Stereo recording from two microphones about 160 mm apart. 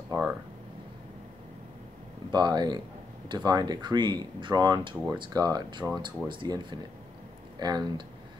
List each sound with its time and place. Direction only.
0.1 s speech: 15° right (ahead or behind)
2.3 s speech: 25° right (ahead or behind)